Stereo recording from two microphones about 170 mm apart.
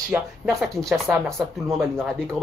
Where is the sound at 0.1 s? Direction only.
10° right (ahead or behind).